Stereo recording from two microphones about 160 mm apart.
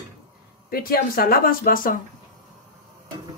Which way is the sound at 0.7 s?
70° left (ahead or behind).